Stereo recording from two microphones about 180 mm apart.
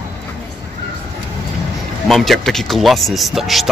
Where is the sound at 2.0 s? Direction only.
Centre (ahead or behind).